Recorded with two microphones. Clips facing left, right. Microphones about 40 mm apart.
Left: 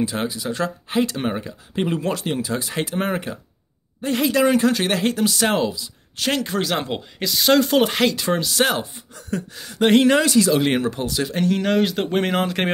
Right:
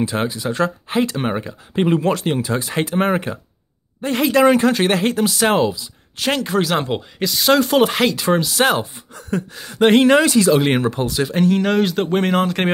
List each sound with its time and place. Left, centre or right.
0.0 s speech: right
1.3 s speech: right
5.2 s speech: right
6.7 s speech: centre
8.6 s speech: right
11.2 s speech: centre